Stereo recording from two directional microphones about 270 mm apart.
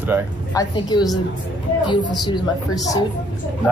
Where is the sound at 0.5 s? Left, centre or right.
Centre.